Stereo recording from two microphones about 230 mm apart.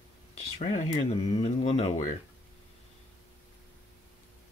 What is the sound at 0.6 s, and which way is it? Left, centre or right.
Speech, left.